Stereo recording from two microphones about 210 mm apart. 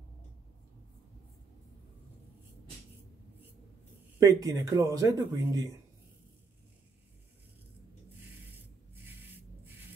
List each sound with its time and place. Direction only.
4.2 s speech: 15° right (ahead or behind)